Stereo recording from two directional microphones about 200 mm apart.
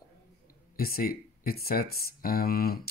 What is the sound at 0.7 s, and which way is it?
Speech, 50° left (ahead or behind).